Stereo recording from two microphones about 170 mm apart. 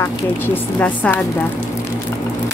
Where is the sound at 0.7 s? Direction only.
10° left (ahead or behind).